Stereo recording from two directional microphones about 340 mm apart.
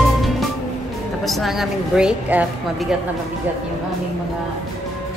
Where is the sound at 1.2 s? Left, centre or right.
Centre.